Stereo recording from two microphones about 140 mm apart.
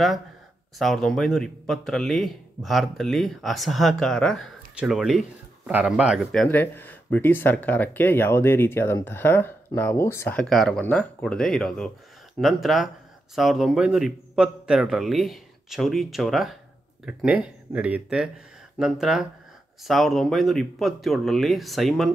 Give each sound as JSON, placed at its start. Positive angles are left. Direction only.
{"t": 0.7, "sound": "speech", "side_deg": 0}
{"t": 6.4, "sound": "speech", "side_deg": 15}
{"t": 10.4, "sound": "speech", "side_deg": 5}